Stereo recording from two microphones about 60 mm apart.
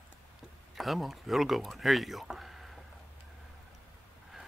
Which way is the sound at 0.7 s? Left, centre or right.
Centre.